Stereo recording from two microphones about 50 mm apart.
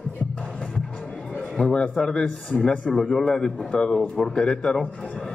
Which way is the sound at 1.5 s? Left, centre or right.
Centre.